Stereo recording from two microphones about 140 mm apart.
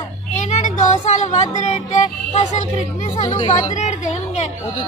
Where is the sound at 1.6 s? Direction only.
60° left (ahead or behind).